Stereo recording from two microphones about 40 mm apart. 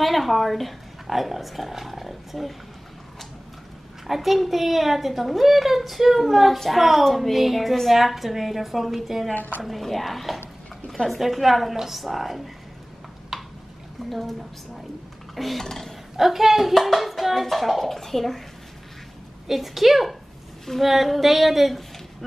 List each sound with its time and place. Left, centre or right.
0.0 s speech: centre
4.1 s speech: centre
9.3 s a woman's voice: left
9.6 s speech: centre
13.3 s a sound: centre
14.0 s speech: centre
15.3 s a sound: centre
16.2 s speech: centre
19.4 s speech: centre